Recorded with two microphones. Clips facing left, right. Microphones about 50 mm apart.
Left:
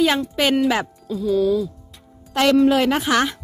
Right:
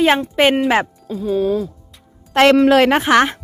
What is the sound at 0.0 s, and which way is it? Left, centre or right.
Speech, right.